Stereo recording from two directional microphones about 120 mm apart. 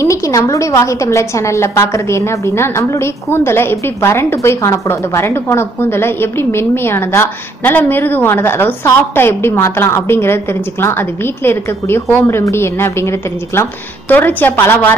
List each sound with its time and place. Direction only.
0.0 s a woman's voice: 25° left (ahead or behind)